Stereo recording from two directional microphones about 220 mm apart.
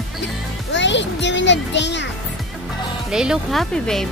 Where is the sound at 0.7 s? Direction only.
55° left (ahead or behind).